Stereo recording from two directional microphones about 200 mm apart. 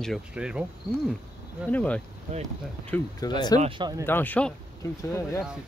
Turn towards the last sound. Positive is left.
turn(degrees=15)  # may be behind; listen again after turning